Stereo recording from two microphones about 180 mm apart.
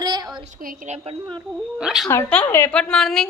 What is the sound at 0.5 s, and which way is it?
Speech, 50° right (ahead or behind).